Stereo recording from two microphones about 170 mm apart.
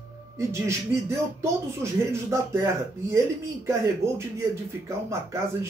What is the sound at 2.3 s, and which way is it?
Speech, 15° right (ahead or behind).